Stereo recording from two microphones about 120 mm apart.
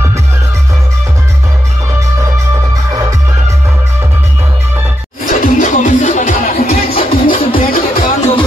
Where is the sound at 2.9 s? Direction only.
30° right (ahead or behind).